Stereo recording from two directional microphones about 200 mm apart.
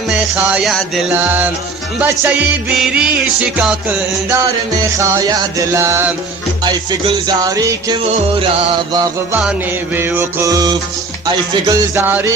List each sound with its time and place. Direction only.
0.1 s music: 5° right (ahead or behind)
4.9 s music: 15° right (ahead or behind)